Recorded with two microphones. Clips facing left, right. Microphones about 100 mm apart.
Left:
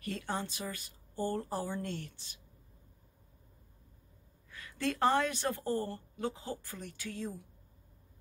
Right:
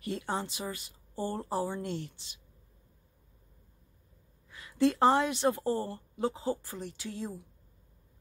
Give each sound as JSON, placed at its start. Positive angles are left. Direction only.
{"t": 0.0, "sound": "speech", "side_deg": -20}
{"t": 4.5, "sound": "speech", "side_deg": -20}